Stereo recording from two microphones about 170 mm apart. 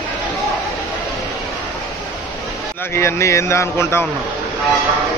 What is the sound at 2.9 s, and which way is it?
Speech, 15° left (ahead or behind).